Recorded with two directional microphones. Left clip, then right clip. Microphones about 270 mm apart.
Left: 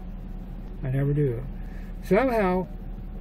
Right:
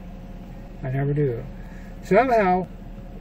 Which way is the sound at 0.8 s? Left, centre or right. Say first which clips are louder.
Right 2 dB; centre.